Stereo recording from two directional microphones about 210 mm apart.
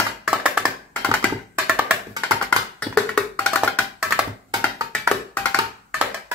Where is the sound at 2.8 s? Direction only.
5° left (ahead or behind).